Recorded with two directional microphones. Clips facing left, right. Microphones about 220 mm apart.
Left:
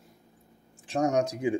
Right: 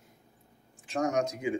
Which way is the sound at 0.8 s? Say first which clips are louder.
Left 3 dB; 30° left (ahead or behind).